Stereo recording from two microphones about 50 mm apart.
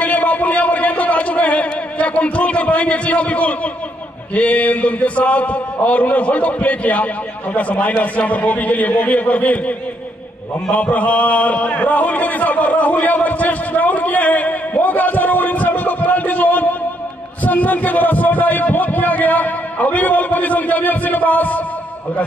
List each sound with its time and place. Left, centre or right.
0.0 s music: left
4.4 s a man's voice: left